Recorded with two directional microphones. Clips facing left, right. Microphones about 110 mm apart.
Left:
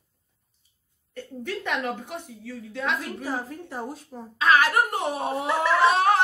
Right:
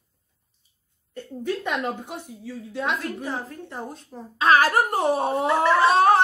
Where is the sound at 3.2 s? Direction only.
5° left (ahead or behind).